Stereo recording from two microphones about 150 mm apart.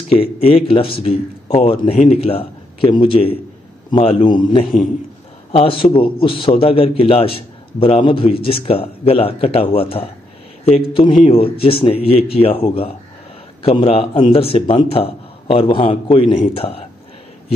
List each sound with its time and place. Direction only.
0.1 s a man's voice: 40° left (ahead or behind)